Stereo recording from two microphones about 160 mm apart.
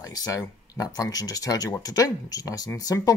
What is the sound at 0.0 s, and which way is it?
Speech, 20° left (ahead or behind).